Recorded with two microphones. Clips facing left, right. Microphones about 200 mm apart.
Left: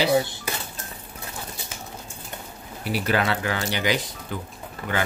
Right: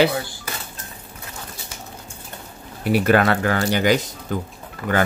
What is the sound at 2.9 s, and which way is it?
Speech, 55° right (ahead or behind).